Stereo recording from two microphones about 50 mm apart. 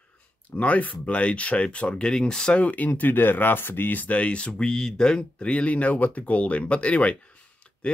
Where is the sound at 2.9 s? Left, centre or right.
Left; by 5.5 s centre.